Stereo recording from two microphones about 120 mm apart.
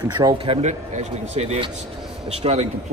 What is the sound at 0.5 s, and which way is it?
Speech, 70° right (ahead or behind).